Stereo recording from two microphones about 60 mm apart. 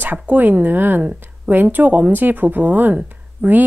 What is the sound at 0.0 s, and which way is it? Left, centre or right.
Speech, right.